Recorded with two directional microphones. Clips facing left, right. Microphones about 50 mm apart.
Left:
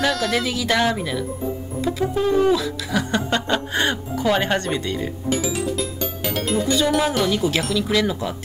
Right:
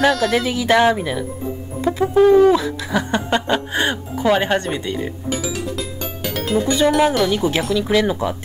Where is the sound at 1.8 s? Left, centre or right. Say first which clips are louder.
Right 8 dB; right.